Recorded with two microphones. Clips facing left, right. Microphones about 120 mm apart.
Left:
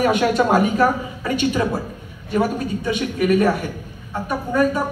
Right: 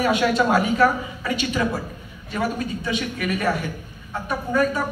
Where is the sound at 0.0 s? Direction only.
50° left (ahead or behind).